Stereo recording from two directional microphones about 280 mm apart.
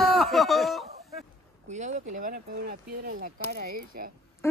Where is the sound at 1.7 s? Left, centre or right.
Right.